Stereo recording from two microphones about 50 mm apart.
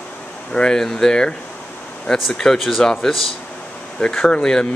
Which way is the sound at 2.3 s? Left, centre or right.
Centre.